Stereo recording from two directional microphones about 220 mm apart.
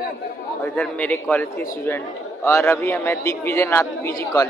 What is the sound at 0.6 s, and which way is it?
A man's voice, 5° left (ahead or behind).